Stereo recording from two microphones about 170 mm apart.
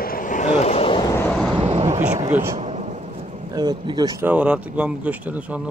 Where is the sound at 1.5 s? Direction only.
35° right (ahead or behind).